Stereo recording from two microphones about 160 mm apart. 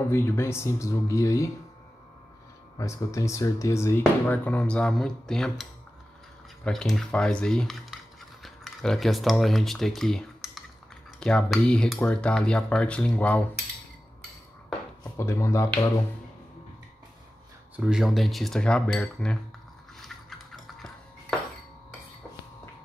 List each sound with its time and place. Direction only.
0.1 s speech: 15° left (ahead or behind)
2.8 s speech: 20° left (ahead or behind); by 10.6 s centre (ahead or behind)
11.1 s cutlery: 5° left (ahead or behind)
15.1 s speech: 20° left (ahead or behind)
17.7 s speech: 5° right (ahead or behind)
20.0 s a sound: centre (ahead or behind)